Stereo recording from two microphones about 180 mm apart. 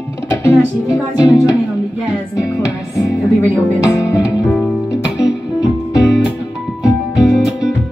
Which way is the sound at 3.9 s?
15° left (ahead or behind).